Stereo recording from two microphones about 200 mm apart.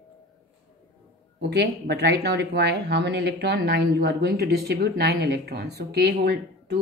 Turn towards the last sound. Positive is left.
turn(degrees=-55)  # may be behind; listen again after turning